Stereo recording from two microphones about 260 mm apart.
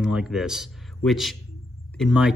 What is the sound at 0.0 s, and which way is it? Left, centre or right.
A man's voice, centre.